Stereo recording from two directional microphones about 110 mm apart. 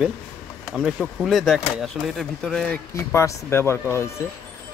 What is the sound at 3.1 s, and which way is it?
Speech, 25° left (ahead or behind).